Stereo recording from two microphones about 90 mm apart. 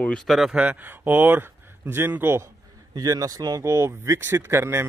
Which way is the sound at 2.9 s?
45° right (ahead or behind).